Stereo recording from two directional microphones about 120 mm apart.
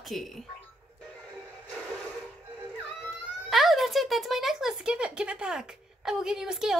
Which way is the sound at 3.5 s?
Centre (ahead or behind).